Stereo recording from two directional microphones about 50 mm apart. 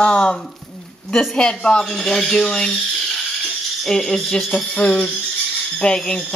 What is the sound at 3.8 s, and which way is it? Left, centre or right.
Speech, centre.